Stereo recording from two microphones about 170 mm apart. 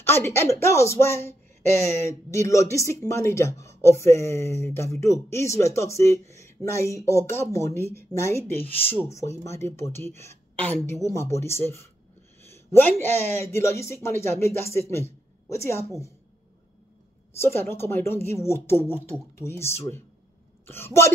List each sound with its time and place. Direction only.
0.0 s speech: 15° left (ahead or behind)
2.3 s speech: 15° left (ahead or behind)
17.6 s speech: 15° left (ahead or behind)